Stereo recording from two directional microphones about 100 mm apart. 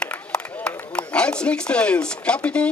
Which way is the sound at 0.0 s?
10° left (ahead or behind).